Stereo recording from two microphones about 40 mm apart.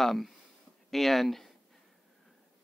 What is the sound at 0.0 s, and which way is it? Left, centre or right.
Speech, centre.